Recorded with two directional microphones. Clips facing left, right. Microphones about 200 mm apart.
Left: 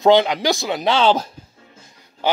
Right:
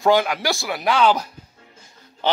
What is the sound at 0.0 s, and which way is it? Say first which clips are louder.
Speech: left 4 dB; 20° left (ahead or behind).